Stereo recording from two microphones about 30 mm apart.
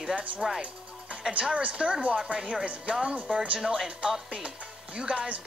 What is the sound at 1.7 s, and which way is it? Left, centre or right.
Speech, right.